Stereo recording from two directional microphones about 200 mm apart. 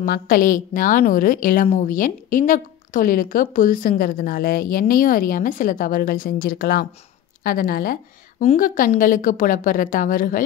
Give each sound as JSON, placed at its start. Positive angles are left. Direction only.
{"t": 0.0, "sound": "a woman's voice", "side_deg": 45}